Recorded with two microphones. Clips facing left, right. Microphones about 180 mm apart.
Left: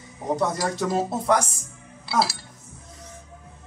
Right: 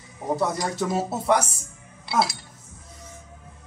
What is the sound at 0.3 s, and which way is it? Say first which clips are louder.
Speech: left 1 dB; centre (ahead or behind).